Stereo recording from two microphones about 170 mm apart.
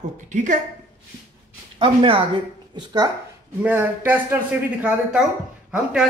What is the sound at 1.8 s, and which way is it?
Speech, 30° right (ahead or behind).